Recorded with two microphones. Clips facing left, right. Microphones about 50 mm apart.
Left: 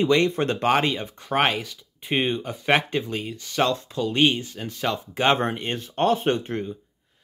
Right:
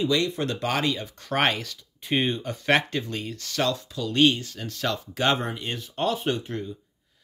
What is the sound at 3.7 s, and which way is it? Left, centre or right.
Speech, left.